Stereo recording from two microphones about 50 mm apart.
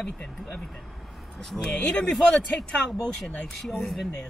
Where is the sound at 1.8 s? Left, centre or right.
Centre.